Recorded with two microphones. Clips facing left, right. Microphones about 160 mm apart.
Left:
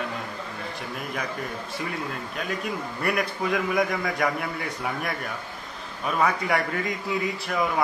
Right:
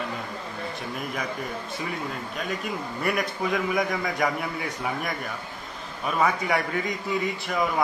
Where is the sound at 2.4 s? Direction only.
Centre (ahead or behind).